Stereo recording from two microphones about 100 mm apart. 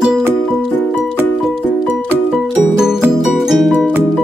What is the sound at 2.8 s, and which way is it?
Music, 5° right (ahead or behind).